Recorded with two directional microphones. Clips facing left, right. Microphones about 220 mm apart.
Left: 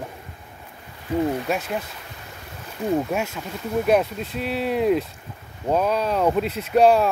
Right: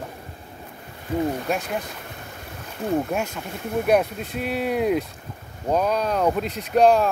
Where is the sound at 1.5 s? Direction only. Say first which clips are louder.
Even; 5° left (ahead or behind).